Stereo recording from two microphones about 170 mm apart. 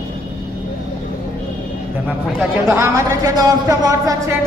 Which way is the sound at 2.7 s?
15° right (ahead or behind).